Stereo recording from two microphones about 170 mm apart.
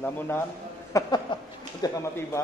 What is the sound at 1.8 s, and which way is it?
Speech, 20° left (ahead or behind).